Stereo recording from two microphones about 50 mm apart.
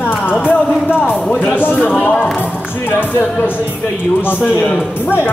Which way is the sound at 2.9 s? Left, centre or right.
Left.